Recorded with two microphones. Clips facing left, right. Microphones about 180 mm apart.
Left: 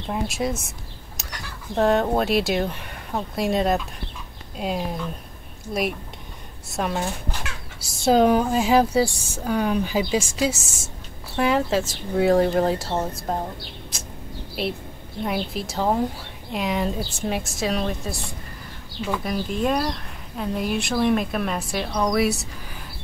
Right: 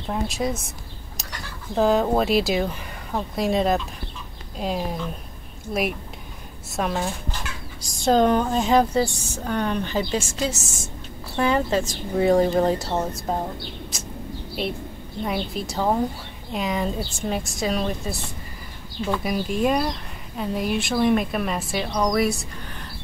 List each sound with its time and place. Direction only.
0.1 s speech: centre (ahead or behind)
1.8 s speech: centre (ahead or behind)
13.9 s bird: centre (ahead or behind)
15.2 s speech: centre (ahead or behind)